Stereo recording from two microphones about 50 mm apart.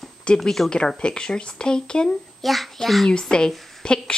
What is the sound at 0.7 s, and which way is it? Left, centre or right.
Speech, centre.